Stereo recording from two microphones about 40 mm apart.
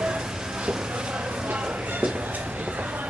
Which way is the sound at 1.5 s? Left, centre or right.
Right.